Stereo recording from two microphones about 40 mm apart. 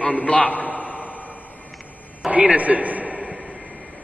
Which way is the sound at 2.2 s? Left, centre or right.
Right.